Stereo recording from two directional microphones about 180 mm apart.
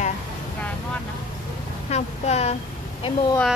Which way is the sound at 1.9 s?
35° left (ahead or behind).